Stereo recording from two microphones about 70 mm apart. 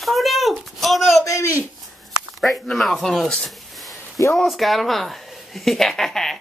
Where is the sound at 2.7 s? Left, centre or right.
Centre.